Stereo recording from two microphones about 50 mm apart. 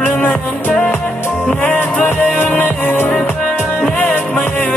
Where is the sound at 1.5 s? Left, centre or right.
Left.